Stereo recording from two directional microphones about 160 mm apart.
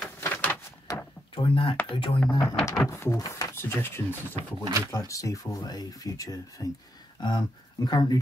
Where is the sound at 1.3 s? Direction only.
35° left (ahead or behind).